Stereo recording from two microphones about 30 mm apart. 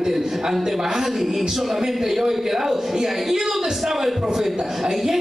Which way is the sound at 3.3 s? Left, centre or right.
Centre.